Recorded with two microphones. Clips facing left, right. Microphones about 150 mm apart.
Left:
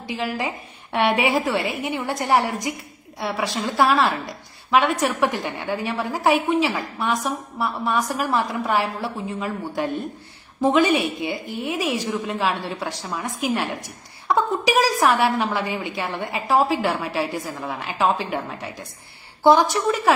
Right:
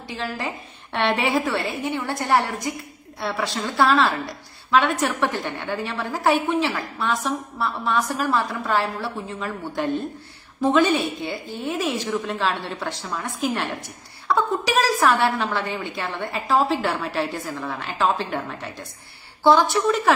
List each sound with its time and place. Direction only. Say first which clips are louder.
0.0 s a woman's voice: left 3 dB; 15° left (ahead or behind)